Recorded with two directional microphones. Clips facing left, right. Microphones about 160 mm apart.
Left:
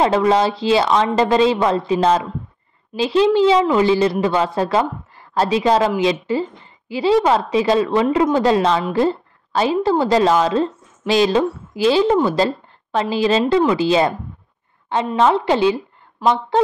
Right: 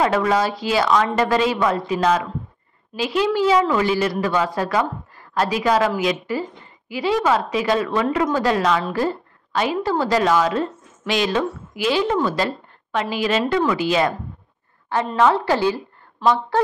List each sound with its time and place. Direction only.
0.0 s a woman's voice: 25° left (ahead or behind)
15.1 s a woman's voice: 20° left (ahead or behind)